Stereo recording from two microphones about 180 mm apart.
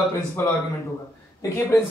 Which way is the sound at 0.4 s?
10° left (ahead or behind).